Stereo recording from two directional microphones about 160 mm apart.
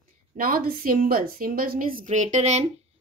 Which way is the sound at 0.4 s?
65° right (ahead or behind).